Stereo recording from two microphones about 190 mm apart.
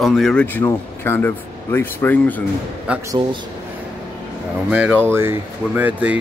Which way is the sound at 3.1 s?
25° right (ahead or behind).